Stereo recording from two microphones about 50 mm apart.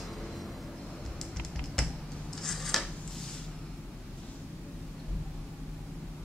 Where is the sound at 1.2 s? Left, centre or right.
Centre.